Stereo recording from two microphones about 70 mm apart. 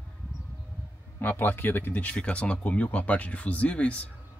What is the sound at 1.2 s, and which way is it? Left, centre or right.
Speech, left.